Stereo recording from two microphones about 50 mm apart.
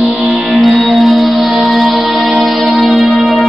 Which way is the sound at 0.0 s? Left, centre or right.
Centre.